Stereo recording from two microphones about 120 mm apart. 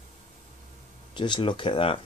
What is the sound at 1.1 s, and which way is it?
Speech, 40° left (ahead or behind).